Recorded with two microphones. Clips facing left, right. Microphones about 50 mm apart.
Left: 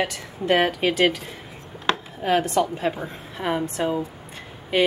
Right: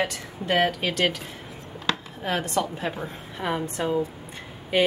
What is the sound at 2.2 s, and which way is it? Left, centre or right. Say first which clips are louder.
A woman's voice: left 5 dB; centre.